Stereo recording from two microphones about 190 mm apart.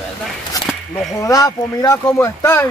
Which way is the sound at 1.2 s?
20° left (ahead or behind).